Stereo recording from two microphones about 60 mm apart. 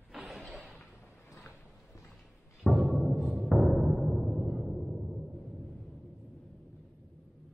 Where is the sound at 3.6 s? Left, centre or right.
Centre.